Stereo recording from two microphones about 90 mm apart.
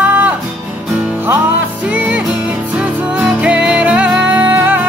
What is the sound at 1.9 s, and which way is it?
Music, 15° right (ahead or behind).